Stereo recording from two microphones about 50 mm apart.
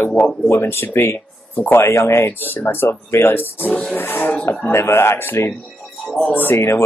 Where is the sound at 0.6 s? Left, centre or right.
Left.